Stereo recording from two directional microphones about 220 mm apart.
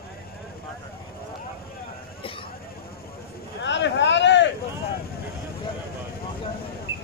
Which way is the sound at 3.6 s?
55° left (ahead or behind).